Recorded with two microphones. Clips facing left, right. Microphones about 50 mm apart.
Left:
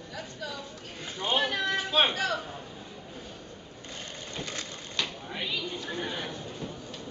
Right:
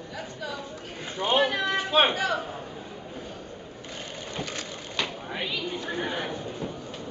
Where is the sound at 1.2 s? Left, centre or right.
Centre.